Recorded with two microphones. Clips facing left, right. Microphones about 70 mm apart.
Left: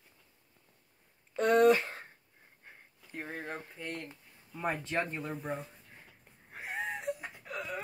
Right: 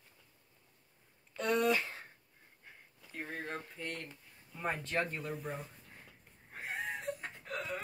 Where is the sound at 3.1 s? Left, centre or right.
Centre.